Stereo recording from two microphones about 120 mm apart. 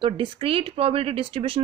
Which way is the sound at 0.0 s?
45° right (ahead or behind).